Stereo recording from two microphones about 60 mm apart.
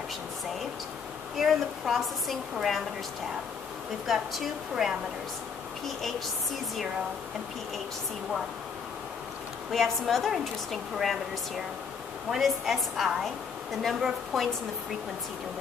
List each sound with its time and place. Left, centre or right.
1.4 s a woman's voice: centre
4.1 s a woman's voice: centre
9.7 s a woman's voice: centre